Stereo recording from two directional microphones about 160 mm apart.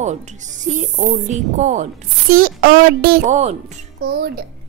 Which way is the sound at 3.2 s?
45° right (ahead or behind).